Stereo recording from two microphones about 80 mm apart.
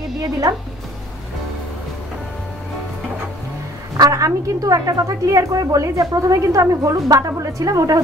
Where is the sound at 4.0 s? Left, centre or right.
Right.